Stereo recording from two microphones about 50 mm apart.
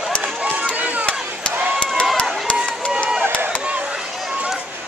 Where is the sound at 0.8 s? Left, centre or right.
Right.